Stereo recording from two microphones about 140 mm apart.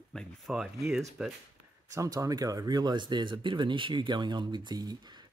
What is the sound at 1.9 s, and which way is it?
Speech, 25° right (ahead or behind).